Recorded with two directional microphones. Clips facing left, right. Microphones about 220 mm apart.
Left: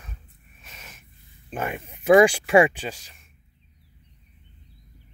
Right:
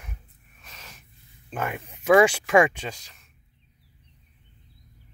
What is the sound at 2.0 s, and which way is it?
Speech, 30° left (ahead or behind).